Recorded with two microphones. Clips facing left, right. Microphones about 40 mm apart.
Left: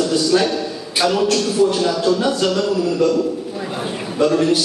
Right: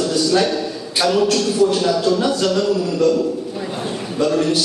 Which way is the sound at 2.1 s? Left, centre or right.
Centre.